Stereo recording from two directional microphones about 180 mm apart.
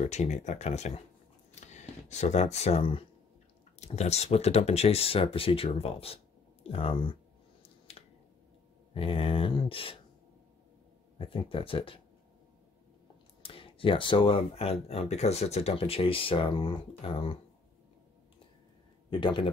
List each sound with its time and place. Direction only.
0.0 s speech: 40° left (ahead or behind)
1.5 s a sound: 40° left (ahead or behind)
3.8 s speech: 35° left (ahead or behind)
8.0 s finger snapping: 35° left (ahead or behind)
8.9 s speech: 30° left (ahead or behind)
11.1 s speech: 30° left (ahead or behind)
13.4 s speech: 30° left (ahead or behind)
19.0 s speech: 25° left (ahead or behind)